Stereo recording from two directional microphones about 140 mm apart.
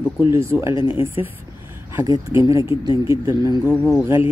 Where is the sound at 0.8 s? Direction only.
40° left (ahead or behind).